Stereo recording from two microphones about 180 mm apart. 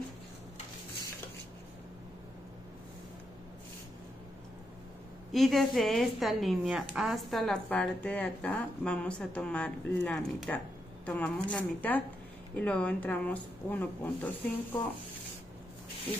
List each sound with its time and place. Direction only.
5.3 s a woman's voice: centre (ahead or behind)